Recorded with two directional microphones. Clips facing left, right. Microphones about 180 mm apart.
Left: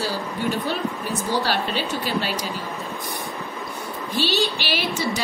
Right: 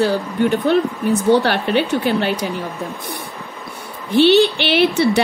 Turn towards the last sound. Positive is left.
turn(degrees=-65)  # may be behind; listen again after turning